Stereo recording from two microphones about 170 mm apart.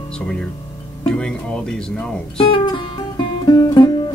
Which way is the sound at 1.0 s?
5° left (ahead or behind).